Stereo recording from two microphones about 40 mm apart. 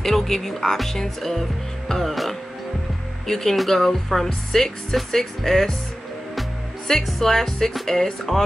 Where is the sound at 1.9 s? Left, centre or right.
Centre.